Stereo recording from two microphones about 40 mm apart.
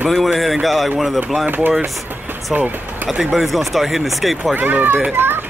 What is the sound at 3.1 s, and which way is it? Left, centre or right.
Speech, centre.